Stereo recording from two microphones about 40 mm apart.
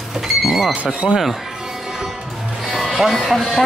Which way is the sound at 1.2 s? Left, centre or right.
Centre.